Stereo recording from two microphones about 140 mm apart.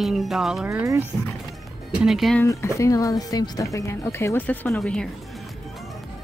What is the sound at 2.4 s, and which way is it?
Speech, 20° left (ahead or behind).